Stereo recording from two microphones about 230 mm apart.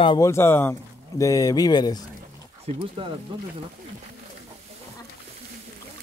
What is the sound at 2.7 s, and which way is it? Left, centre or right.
Speech, right.